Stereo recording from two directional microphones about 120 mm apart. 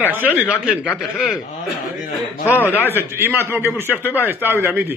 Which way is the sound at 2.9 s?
20° right (ahead or behind).